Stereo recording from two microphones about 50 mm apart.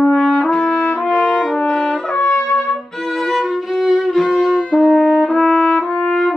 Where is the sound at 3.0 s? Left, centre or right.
Centre.